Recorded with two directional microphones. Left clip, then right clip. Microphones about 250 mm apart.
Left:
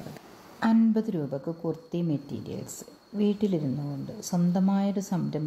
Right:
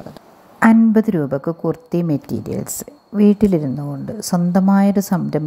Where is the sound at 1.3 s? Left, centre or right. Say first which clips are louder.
Right 11 dB; right.